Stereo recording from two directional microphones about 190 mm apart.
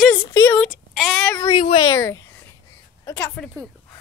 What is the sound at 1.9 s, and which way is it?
Speech, 15° left (ahead or behind).